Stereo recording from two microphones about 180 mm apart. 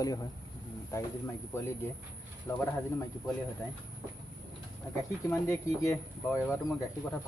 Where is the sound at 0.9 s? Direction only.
15° left (ahead or behind).